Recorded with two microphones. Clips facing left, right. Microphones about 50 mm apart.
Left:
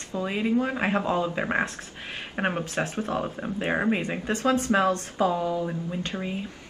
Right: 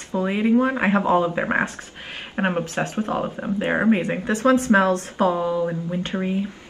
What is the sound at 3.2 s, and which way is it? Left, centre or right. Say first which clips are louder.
Speech: right 5 dB; right.